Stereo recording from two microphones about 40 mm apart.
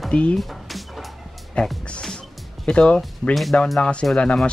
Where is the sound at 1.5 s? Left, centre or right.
Left.